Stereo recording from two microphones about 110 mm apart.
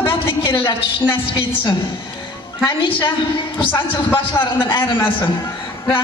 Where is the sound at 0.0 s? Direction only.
50° left (ahead or behind).